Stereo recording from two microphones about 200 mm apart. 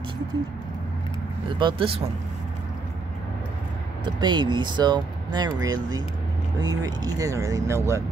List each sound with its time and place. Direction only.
1.6 s speech: 25° right (ahead or behind)
4.0 s speech: 20° right (ahead or behind)